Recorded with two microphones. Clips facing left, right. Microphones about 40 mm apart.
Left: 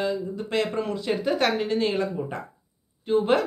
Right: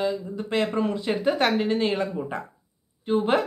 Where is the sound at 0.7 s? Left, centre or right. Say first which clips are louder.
Right 1 dB; centre.